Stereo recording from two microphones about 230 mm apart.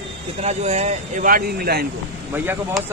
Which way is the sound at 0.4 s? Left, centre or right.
Right.